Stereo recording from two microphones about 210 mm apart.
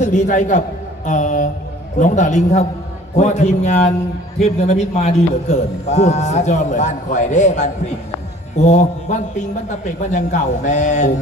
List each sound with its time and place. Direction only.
0.0 s a man's voice: 35° left (ahead or behind)